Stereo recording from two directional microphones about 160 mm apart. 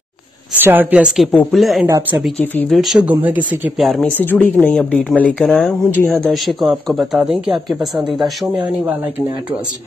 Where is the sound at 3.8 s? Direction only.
Centre (ahead or behind).